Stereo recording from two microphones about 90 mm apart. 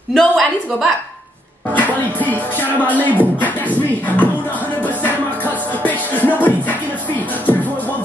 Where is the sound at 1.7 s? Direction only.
15° left (ahead or behind).